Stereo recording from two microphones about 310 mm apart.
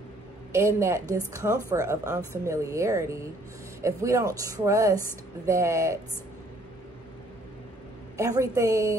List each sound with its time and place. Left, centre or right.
0.5 s speech: centre
8.2 s speech: centre